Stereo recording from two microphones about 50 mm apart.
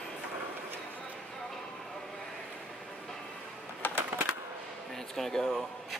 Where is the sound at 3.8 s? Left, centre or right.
Left.